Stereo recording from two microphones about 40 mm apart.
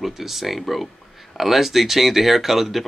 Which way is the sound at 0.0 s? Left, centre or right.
Centre.